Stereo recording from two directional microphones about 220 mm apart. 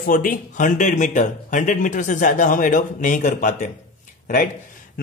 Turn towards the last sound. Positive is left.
turn(degrees=40)  # may be behind; listen again after turning